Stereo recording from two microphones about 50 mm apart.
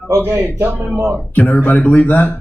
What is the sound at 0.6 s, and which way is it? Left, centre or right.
Speech, right.